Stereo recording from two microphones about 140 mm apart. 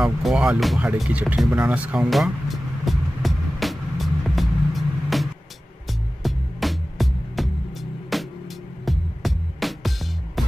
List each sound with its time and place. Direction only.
0.0 s speech: 5° right (ahead or behind)
1.5 s music: 10° right (ahead or behind)